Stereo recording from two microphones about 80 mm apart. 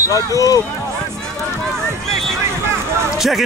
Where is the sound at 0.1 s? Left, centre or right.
Left.